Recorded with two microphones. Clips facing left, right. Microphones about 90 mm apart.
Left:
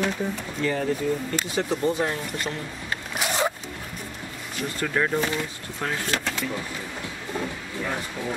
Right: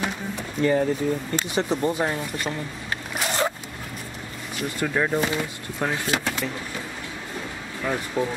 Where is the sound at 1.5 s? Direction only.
20° right (ahead or behind).